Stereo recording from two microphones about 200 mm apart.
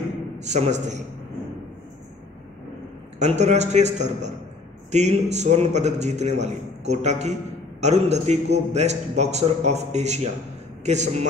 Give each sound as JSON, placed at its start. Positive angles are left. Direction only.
{"t": 0.5, "sound": "a man's voice", "side_deg": -35}
{"t": 3.2, "sound": "a man's voice", "side_deg": -35}